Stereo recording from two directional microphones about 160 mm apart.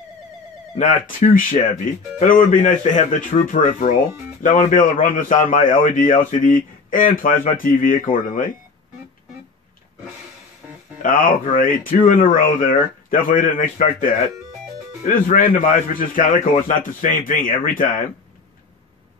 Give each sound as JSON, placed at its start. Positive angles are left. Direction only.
{"t": 0.7, "sound": "speech", "side_deg": 55}
{"t": 11.0, "sound": "speech", "side_deg": 60}